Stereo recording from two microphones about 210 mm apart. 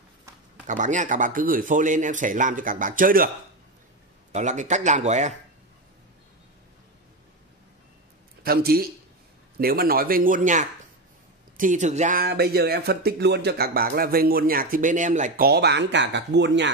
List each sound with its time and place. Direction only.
0.7 s speech: 35° right (ahead or behind)
4.3 s speech: 35° right (ahead or behind)
8.5 s speech: 45° right (ahead or behind)